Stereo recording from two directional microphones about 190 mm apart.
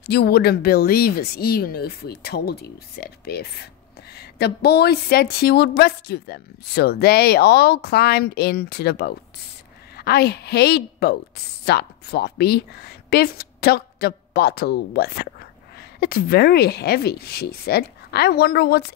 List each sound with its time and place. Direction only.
0.0 s a woman's voice: 55° left (ahead or behind)